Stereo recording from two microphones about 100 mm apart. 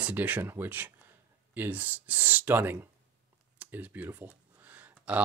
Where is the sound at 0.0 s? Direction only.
15° right (ahead or behind).